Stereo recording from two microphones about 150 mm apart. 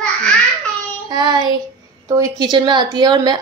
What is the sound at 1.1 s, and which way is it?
A woman's voice, 30° right (ahead or behind).